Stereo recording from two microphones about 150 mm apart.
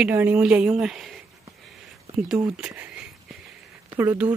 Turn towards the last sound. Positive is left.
turn(degrees=-10)  # may be behind; listen again after turning